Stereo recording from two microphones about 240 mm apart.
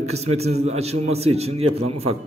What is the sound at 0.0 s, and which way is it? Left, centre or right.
A man's voice, right.